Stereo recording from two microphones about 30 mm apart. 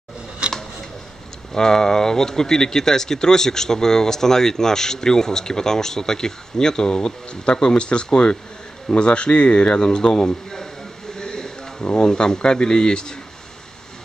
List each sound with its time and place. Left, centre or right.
1.5 s speech: left
11.1 s a sound: left
12.4 s speech: left